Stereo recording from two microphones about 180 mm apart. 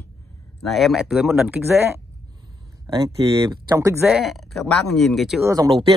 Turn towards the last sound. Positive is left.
turn(degrees=-20)  # may be behind; listen again after turning